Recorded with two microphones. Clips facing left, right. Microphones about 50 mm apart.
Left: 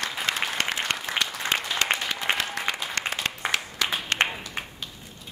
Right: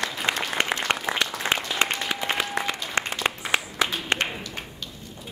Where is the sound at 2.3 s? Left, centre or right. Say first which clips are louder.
Left 1 dB; centre.